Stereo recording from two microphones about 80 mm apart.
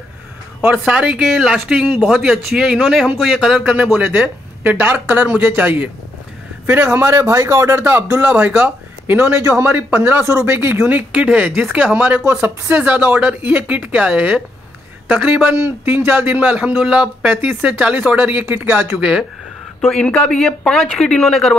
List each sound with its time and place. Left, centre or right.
0.7 s a man's voice: centre
4.6 s speech: right
9.8 s speech: right
15.5 s speech: right
18.9 s speech: centre
19.8 s a man's voice: centre
20.1 s a man's voice: centre